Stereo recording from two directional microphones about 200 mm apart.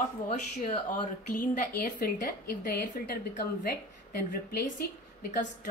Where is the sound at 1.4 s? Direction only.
45° left (ahead or behind).